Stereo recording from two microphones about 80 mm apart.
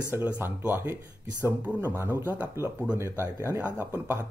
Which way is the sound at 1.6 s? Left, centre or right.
Right.